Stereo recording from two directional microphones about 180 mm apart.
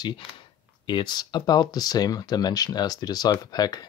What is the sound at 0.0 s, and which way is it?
Speech, 25° left (ahead or behind).